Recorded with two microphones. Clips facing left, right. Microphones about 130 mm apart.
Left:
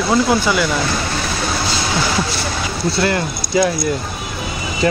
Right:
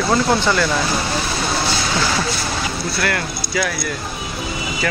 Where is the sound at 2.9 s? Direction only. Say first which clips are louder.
Left 7 dB; 25° left (ahead or behind).